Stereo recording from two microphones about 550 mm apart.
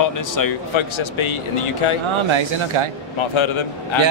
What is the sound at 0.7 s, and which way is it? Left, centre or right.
Speech, left.